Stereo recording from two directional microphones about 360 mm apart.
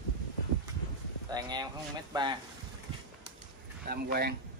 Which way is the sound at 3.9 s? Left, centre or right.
Right.